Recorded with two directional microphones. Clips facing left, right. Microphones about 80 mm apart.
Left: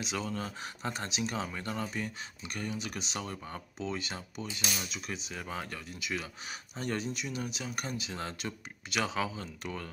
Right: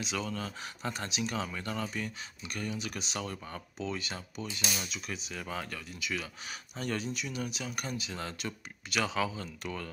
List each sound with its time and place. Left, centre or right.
0.0 s speech: left